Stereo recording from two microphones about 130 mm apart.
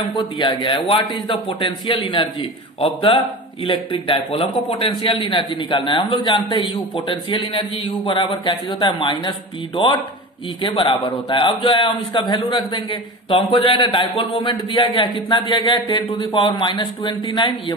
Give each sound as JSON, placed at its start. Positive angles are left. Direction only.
{"t": 0.0, "sound": "a man's voice", "side_deg": 40}
{"t": 10.6, "sound": "a man's voice", "side_deg": 40}